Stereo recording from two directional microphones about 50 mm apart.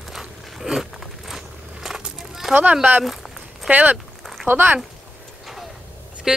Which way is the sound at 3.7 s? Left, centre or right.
Right.